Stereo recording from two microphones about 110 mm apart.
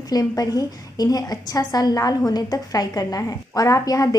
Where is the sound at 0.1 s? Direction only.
35° left (ahead or behind).